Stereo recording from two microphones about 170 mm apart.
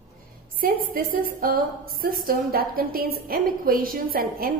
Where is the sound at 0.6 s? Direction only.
55° right (ahead or behind).